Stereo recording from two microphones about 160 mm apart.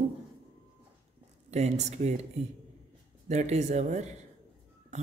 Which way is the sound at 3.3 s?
45° right (ahead or behind).